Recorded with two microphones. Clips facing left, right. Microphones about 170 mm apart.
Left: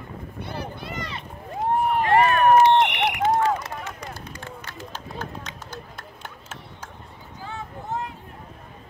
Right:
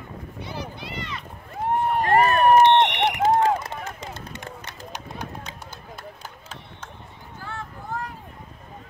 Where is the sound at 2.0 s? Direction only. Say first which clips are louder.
Even; 40° right (ahead or behind).